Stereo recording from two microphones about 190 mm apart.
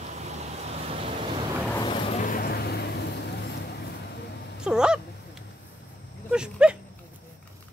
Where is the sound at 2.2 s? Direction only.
50° left (ahead or behind).